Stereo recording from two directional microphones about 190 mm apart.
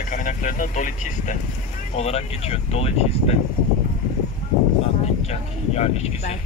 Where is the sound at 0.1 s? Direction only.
45° left (ahead or behind).